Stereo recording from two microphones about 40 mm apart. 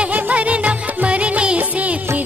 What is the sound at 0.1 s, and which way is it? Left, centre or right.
Music, right.